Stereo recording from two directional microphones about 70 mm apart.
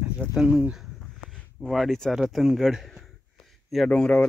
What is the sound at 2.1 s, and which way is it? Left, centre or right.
Speech, centre.